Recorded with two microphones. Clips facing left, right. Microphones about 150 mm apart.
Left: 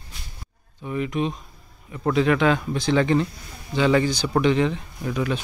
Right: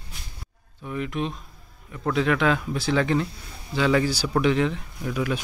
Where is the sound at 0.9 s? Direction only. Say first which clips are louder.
Left 3 dB; centre (ahead or behind).